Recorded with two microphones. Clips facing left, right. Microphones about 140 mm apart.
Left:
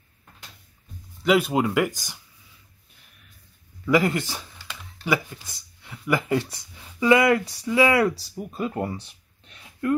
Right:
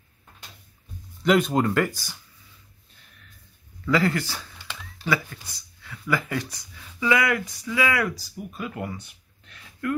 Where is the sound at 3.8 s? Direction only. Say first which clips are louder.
Left 2 dB; 15° left (ahead or behind).